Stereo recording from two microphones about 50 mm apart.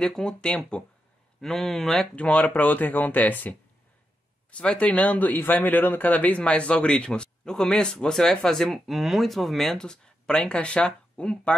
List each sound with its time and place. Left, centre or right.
0.0 s speech: centre
2.1 s speech: left
4.5 s speech: left
8.7 s speech: centre
9.8 s speech: centre